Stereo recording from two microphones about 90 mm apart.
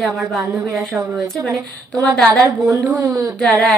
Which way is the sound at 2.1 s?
10° left (ahead or behind).